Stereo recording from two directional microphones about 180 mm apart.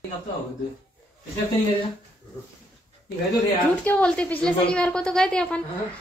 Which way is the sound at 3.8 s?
5° left (ahead or behind).